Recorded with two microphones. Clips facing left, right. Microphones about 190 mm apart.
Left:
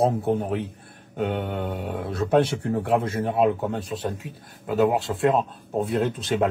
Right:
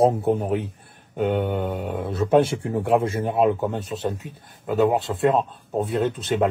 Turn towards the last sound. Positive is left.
turn(degrees=0)  # may be behind; listen again after turning